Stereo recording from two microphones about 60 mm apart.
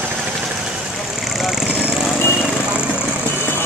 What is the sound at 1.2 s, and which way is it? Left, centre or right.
Vehicle, centre.